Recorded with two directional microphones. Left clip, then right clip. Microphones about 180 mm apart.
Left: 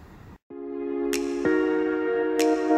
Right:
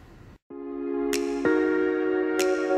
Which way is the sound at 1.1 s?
Centre (ahead or behind).